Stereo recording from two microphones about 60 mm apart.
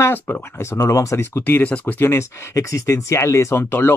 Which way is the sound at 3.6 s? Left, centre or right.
Left.